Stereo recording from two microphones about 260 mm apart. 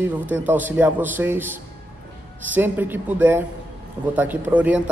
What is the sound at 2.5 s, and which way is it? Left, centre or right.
A man's voice, centre.